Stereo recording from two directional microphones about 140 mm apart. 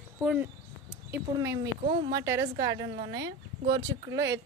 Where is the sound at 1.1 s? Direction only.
20° right (ahead or behind).